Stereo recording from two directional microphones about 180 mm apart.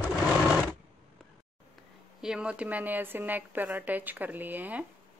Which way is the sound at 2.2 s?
5° right (ahead or behind).